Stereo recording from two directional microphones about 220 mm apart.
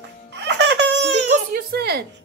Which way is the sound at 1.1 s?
35° right (ahead or behind).